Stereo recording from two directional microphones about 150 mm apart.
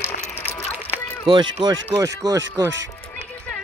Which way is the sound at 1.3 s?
30° right (ahead or behind).